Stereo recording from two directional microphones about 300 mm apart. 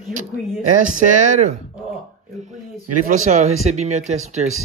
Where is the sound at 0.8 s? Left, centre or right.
Right.